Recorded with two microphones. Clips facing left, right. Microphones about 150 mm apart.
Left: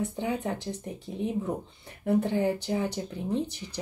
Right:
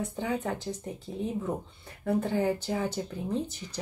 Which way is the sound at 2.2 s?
15° left (ahead or behind).